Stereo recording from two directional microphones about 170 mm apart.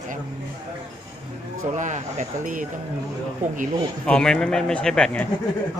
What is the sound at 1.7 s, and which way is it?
Speech, 45° right (ahead or behind).